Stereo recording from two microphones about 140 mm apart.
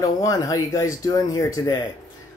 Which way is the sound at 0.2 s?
25° left (ahead or behind).